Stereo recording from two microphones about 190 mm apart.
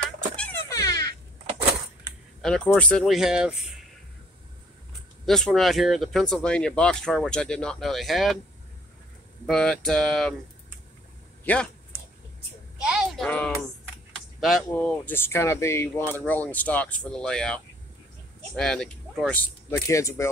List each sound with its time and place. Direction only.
0.4 s a sound: 10° left (ahead or behind)
2.4 s speech: 5° left (ahead or behind)
5.2 s speech: centre (ahead or behind)
9.5 s speech: 5° left (ahead or behind)
11.4 s speech: 5° left (ahead or behind)
12.8 s a sound: 5° right (ahead or behind)
14.4 s speech: 5° left (ahead or behind)